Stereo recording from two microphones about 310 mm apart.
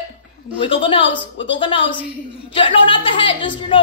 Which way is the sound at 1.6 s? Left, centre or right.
Centre.